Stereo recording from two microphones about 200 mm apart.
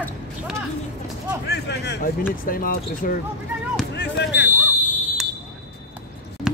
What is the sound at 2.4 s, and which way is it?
Speech, 45° left (ahead or behind).